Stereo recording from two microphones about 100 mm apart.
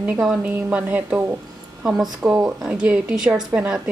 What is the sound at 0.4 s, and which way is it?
A woman's voice, 15° right (ahead or behind).